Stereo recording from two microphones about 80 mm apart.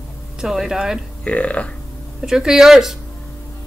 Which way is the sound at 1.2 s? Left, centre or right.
Centre.